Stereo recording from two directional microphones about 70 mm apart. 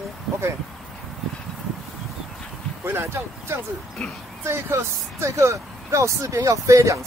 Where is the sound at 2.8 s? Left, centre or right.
Right.